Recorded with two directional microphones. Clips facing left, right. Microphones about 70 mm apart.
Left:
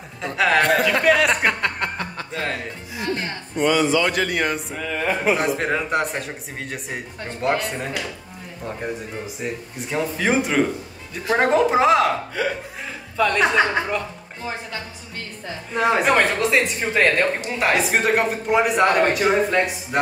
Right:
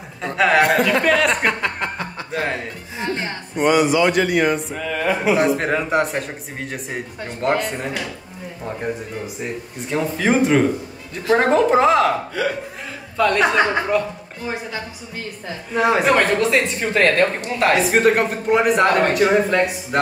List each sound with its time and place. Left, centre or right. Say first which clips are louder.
0.2 s a man's voice: right 3 dB; centre
2.3 s speech: right 4 dB; centre
4.1 s a man's voice: right 5 dB; centre
9.4 s a man's voice: right 1 dB; centre
13.2 s a man's voice: right 2 dB; centre
14.5 s a man's voice: right 4 dB; centre